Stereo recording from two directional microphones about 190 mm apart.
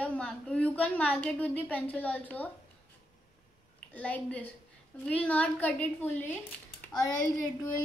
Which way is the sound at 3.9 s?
5° left (ahead or behind).